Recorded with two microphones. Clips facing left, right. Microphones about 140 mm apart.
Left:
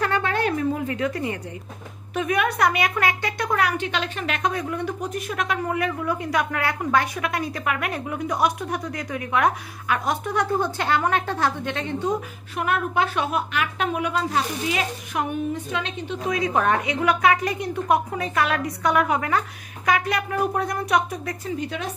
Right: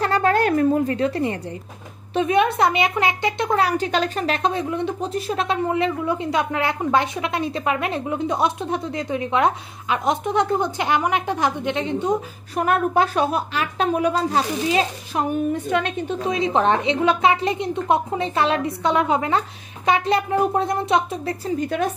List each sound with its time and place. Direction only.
0.0 s a sound: 40° right (ahead or behind)
0.8 s a woman's voice: 30° right (ahead or behind)
12.5 s a woman's voice: 40° right (ahead or behind)
15.7 s a woman's voice: 55° right (ahead or behind)
16.2 s speech: 25° right (ahead or behind)
21.5 s speech: 50° right (ahead or behind)